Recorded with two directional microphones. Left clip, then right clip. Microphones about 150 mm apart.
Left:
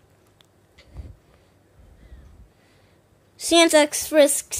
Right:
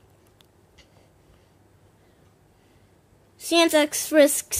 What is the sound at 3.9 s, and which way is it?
Speech, 15° right (ahead or behind).